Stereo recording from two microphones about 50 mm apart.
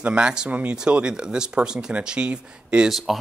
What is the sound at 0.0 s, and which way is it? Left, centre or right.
Speech, centre.